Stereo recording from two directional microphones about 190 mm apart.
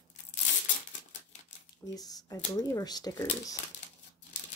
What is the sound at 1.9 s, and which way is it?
Speech, 20° left (ahead or behind).